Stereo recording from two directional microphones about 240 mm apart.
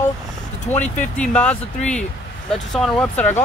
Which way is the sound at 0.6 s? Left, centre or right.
Centre.